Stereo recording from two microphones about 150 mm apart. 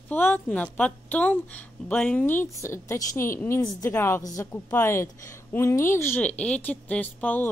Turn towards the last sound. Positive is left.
turn(degrees=10)  # may be behind; listen again after turning